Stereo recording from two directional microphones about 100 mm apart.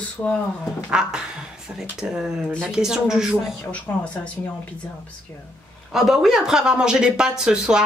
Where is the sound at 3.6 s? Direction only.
15° left (ahead or behind).